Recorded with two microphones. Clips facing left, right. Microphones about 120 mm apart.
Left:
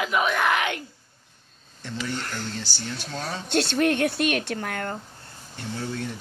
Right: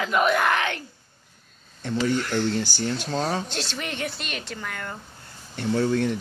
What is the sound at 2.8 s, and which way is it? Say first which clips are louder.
Speech: right 7 dB; 50° right (ahead or behind).